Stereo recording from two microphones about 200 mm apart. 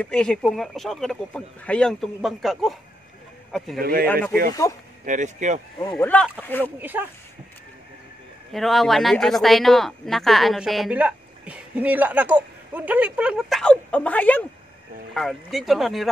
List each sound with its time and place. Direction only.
0.0 s speech: 5° left (ahead or behind)
5.0 s speech: 40° right (ahead or behind)
5.9 s speech: 5° left (ahead or behind)
6.8 s speech: 10° right (ahead or behind)
8.5 s speech: centre (ahead or behind)